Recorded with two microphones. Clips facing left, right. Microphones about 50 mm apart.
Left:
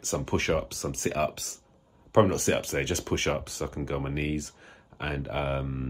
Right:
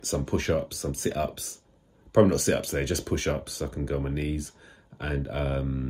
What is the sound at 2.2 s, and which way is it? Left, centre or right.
Speech, left.